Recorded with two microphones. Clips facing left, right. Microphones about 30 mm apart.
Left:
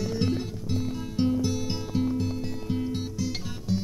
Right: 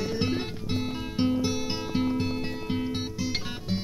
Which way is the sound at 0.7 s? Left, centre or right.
Right.